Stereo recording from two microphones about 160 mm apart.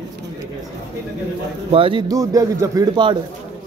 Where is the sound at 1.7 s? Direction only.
35° right (ahead or behind).